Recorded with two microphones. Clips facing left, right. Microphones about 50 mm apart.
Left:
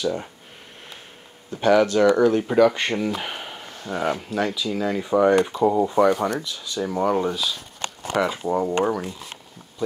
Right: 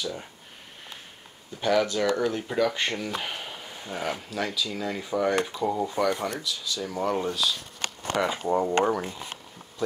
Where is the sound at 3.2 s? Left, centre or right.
Centre.